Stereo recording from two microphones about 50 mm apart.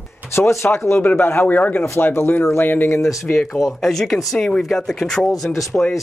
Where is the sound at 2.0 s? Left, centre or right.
Left.